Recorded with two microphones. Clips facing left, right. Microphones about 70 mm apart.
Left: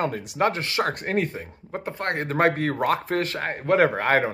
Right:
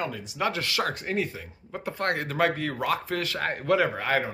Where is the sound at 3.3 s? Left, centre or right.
Left.